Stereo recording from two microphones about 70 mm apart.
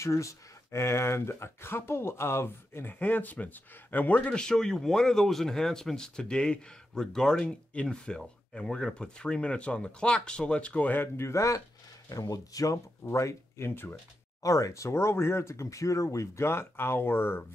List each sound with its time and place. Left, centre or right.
0.0 s speech: left
4.3 s speech: centre
11.1 s speech: left
12.1 s speech: left
13.0 s speech: left
14.4 s speech: left